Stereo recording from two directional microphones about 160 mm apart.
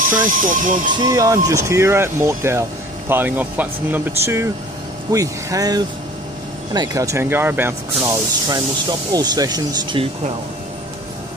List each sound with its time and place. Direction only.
0.2 s speech: 55° right (ahead or behind)
1.0 s speech: 20° right (ahead or behind)